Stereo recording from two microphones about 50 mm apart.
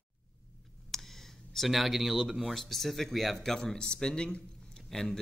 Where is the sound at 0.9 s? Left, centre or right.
Centre.